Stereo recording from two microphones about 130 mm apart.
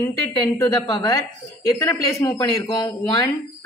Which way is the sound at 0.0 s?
25° left (ahead or behind).